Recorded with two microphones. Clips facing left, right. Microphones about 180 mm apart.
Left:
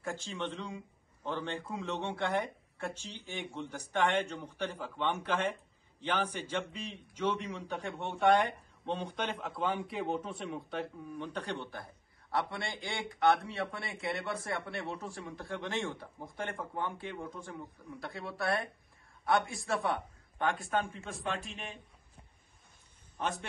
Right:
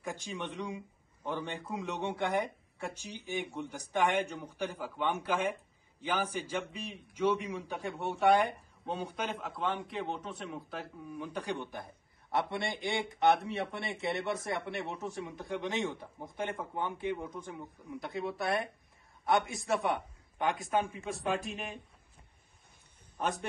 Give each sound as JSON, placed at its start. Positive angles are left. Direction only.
{"t": 0.0, "sound": "a man's voice", "side_deg": -15}